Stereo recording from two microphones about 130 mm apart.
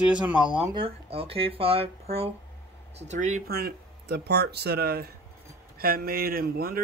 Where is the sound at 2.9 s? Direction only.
60° right (ahead or behind).